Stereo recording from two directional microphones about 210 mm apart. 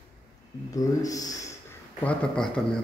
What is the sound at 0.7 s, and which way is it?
Speech, 15° left (ahead or behind).